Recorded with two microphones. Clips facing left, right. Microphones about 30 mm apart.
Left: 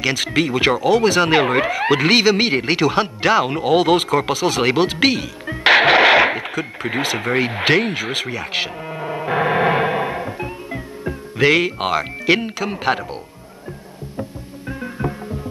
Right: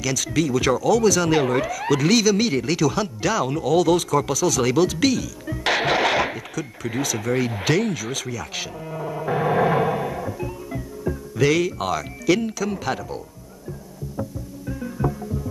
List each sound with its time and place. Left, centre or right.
0.0 s speech: left
14.7 s music: left